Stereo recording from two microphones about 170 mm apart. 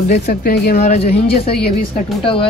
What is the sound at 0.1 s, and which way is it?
Speech, 65° left (ahead or behind).